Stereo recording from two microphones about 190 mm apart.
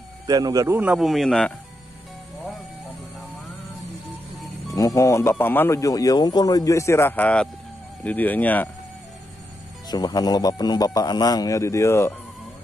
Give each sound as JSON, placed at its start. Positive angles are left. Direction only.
{"t": 0.3, "sound": "a man's voice", "side_deg": -20}
{"t": 4.6, "sound": "speech", "side_deg": 15}
{"t": 9.8, "sound": "a man's voice", "side_deg": 20}